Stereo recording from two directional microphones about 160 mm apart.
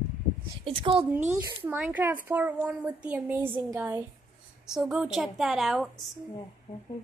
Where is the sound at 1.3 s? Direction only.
10° right (ahead or behind).